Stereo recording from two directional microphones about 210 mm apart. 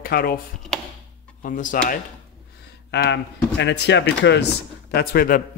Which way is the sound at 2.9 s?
55° left (ahead or behind).